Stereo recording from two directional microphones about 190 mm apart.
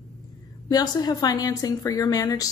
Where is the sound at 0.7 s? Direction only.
20° left (ahead or behind).